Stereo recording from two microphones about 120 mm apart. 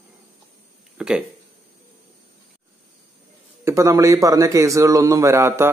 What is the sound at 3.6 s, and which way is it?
A man's voice, 25° right (ahead or behind).